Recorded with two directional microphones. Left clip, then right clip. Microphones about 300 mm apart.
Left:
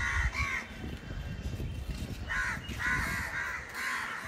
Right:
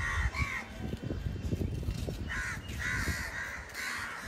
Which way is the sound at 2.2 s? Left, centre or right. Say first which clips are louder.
Left 5 dB; centre.